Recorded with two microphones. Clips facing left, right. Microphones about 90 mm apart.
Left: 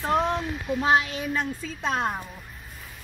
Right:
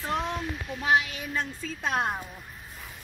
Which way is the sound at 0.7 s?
30° left (ahead or behind).